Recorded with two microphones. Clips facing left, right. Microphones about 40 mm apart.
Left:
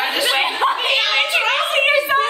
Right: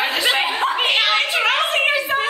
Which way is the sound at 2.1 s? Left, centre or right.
Centre.